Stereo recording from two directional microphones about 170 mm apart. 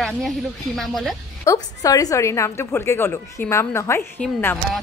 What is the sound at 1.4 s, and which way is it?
A woman's voice, 20° left (ahead or behind).